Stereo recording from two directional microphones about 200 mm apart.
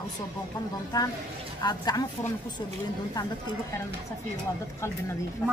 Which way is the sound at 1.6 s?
20° left (ahead or behind).